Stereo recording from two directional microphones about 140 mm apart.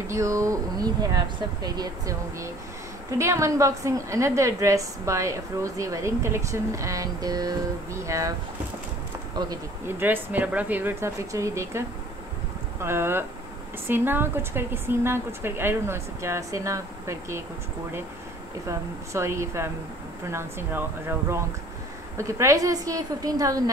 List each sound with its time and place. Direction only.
0.0 s a woman's voice: 20° right (ahead or behind)
9.8 s a woman's voice: 15° right (ahead or behind)
12.8 s a woman's voice: 15° right (ahead or behind)
18.7 s a woman's voice: 20° right (ahead or behind)
22.1 s a woman's voice: 20° right (ahead or behind)